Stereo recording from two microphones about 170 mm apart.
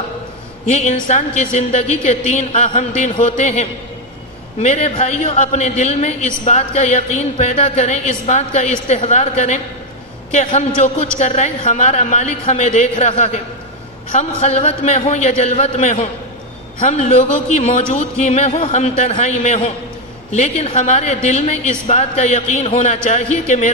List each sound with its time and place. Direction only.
0.7 s a woman's voice: 45° left (ahead or behind)